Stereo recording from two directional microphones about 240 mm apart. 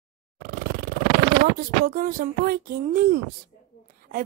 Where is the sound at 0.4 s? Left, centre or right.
Right.